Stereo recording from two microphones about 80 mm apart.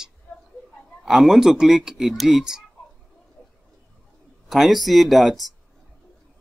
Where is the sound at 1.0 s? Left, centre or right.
Centre.